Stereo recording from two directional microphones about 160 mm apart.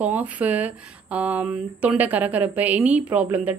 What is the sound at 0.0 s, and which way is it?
Speech, 10° right (ahead or behind).